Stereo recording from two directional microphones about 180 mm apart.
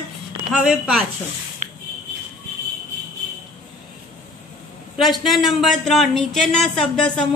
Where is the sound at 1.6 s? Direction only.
45° right (ahead or behind).